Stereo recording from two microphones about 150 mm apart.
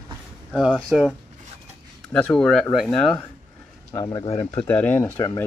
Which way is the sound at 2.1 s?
5° left (ahead or behind).